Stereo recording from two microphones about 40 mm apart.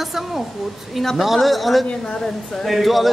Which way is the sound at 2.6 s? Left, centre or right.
Centre.